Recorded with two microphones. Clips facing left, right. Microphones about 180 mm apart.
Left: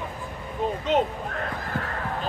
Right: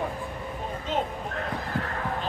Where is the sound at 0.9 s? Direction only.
75° left (ahead or behind).